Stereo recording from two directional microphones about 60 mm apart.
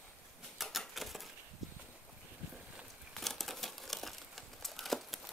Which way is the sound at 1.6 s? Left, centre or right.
Centre.